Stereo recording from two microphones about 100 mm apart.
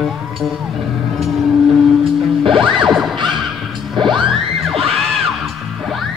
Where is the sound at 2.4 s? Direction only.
60° right (ahead or behind).